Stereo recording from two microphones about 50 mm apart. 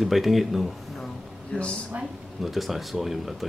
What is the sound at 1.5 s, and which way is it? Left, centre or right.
Speech, left.